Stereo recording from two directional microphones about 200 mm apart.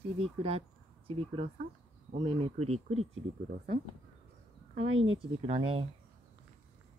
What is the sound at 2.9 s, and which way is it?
Speech, 90° right.